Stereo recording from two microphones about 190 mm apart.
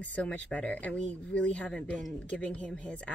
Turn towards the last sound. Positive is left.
turn(degrees=5)  # may be behind; listen again after turning